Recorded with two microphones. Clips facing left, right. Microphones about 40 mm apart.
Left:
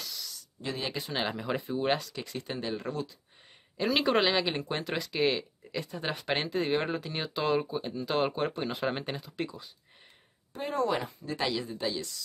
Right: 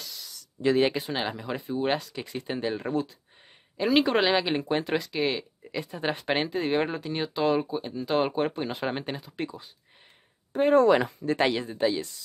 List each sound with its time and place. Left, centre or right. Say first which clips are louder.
0.4 s a sound: right 14 dB; right
1.1 s speech: right 1 dB; centre
3.7 s speech: right 4 dB; centre
10.8 s speech: right 5 dB; right
11.2 s speech: right 7 dB; right